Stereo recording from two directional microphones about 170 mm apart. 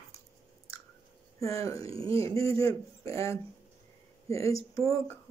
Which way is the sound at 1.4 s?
20° left (ahead or behind).